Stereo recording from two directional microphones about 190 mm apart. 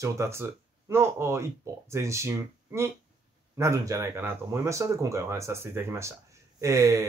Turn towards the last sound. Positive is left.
turn(degrees=-15)  # may be behind; listen again after turning